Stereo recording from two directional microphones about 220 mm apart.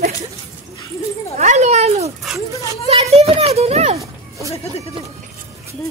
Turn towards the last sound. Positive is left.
turn(degrees=-30)  # may be behind; listen again after turning